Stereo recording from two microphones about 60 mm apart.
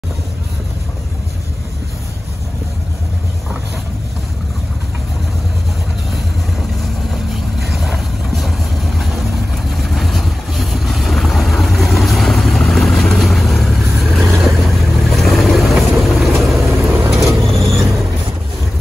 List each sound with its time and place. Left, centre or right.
7.6 s vehicle: centre
16.8 s vehicle: right
17.5 s vehicle: centre